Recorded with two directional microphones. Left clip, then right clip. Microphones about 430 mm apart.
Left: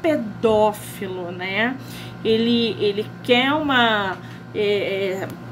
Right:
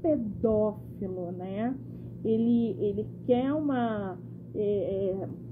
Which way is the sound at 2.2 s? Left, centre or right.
Centre.